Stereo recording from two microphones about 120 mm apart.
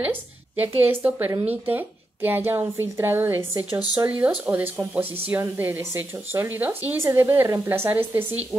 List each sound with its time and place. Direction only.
0.6 s a woman's voice: 15° right (ahead or behind)